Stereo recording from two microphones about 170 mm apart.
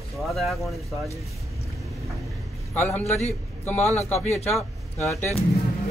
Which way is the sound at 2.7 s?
10° left (ahead or behind).